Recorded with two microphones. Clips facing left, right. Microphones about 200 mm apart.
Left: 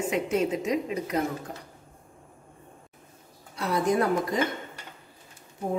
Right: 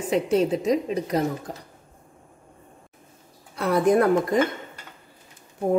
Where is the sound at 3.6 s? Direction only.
55° right (ahead or behind).